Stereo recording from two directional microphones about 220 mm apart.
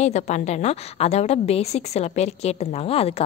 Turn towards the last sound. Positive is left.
turn(degrees=25)  # may be behind; listen again after turning